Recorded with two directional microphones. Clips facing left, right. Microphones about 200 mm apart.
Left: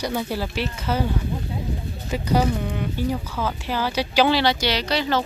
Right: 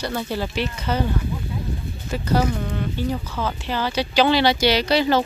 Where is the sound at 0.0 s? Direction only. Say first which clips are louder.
Even; 10° left (ahead or behind).